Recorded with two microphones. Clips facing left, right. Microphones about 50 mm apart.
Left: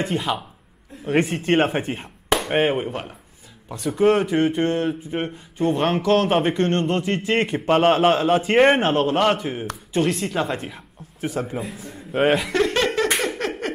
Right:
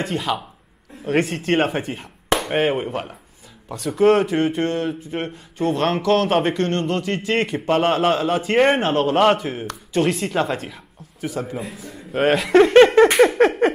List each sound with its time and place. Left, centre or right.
0.0 s speech: centre
6.5 s a man's voice: centre
12.7 s a sound: right